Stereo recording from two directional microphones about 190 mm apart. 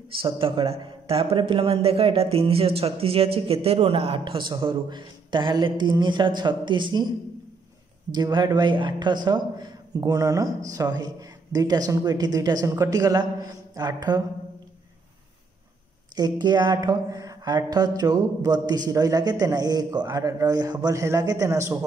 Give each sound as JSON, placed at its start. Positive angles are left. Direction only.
{"t": 0.2, "sound": "speech", "side_deg": -30}
{"t": 8.1, "sound": "speech", "side_deg": -25}
{"t": 16.2, "sound": "speech", "side_deg": -20}